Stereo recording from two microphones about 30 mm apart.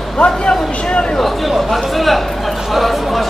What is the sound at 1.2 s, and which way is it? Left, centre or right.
Speech, centre.